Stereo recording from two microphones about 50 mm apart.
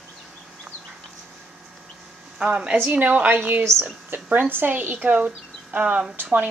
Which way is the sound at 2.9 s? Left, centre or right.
Right.